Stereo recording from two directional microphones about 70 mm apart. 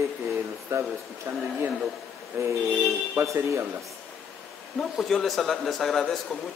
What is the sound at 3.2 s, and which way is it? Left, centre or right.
Speech, right.